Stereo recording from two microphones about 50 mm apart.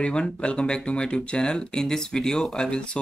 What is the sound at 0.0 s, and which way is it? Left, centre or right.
Speech, centre.